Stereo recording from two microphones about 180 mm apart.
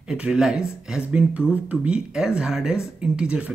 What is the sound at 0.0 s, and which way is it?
Speech, 5° right (ahead or behind).